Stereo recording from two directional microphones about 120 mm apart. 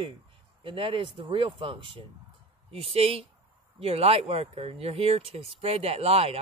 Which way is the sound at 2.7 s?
55° right (ahead or behind).